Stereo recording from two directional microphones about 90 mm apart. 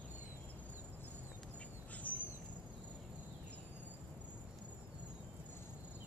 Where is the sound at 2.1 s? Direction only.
20° left (ahead or behind).